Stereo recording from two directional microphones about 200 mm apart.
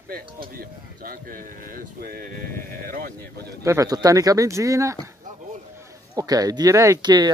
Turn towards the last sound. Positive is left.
turn(degrees=-20)  # may be behind; listen again after turning